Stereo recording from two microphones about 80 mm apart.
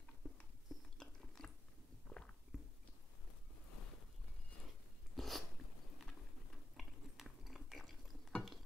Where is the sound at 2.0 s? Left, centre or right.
Centre.